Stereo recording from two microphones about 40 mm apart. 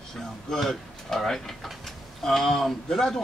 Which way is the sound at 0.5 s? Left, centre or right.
Centre.